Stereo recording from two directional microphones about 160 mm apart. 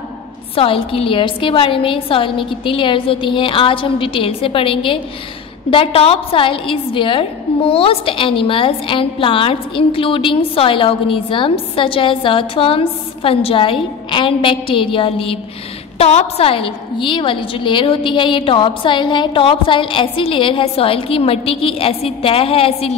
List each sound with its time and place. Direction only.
0.6 s a woman's voice: 35° left (ahead or behind)